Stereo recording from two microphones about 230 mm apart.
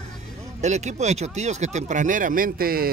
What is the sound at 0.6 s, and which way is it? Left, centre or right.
Speech, right.